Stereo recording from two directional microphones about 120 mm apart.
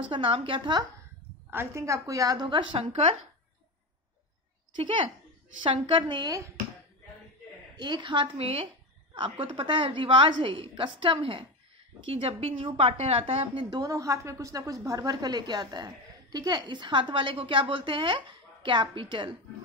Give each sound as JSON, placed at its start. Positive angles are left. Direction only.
{"t": 0.1, "sound": "a woman's voice", "side_deg": -45}
{"t": 1.5, "sound": "a woman's voice", "side_deg": -20}
{"t": 2.4, "sound": "a woman's voice", "side_deg": -45}
{"t": 2.8, "sound": "speech", "side_deg": -65}
{"t": 4.7, "sound": "a woman's voice", "side_deg": -45}
{"t": 7.7, "sound": "a woman's voice", "side_deg": -35}